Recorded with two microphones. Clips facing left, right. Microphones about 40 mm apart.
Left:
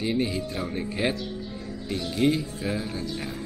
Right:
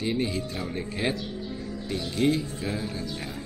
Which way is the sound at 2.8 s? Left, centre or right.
Left.